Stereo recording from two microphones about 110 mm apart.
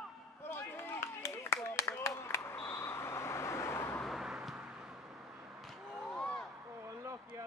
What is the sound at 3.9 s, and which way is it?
Vehicle, centre (ahead or behind).